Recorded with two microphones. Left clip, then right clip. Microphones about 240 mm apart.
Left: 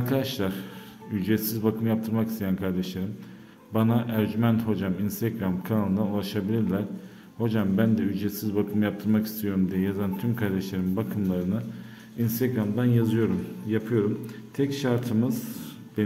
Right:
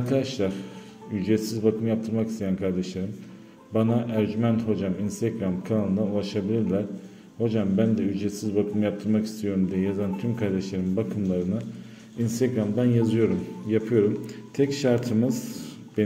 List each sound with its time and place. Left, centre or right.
0.0 s a man's voice: centre